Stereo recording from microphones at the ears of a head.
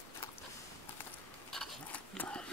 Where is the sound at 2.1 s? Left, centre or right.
Centre.